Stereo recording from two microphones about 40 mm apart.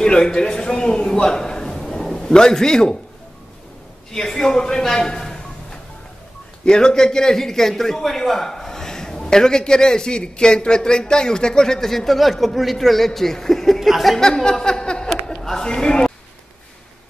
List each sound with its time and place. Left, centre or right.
0.0 s a man's voice: left
1.9 s a sound: centre
2.2 s a man's voice: centre
4.1 s a man's voice: centre
14.1 s a man's voice: centre
15.2 s a sound: centre